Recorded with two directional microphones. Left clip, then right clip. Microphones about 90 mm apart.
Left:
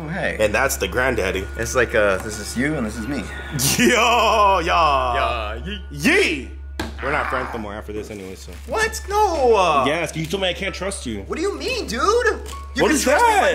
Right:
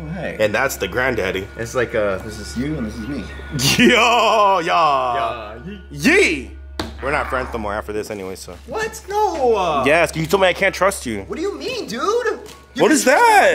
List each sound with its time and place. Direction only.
0.1 s speech: 5° left (ahead or behind)
2.2 s speech: 20° left (ahead or behind)
3.5 s speech: centre (ahead or behind)
7.6 s speech: 30° right (ahead or behind)
8.0 s speech: 50° left (ahead or behind)
8.7 s speech: centre (ahead or behind)
9.8 s speech: 30° right (ahead or behind)
11.2 s speech: centre (ahead or behind)